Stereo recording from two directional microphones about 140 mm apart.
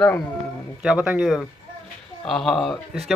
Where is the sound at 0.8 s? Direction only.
5° right (ahead or behind).